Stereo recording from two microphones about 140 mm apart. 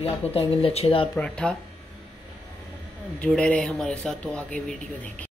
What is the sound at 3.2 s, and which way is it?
Speech, 5° left (ahead or behind).